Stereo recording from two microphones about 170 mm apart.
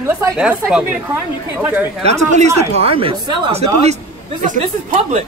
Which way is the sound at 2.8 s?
35° right (ahead or behind).